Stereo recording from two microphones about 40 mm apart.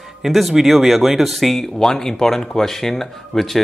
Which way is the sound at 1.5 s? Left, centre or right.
Centre.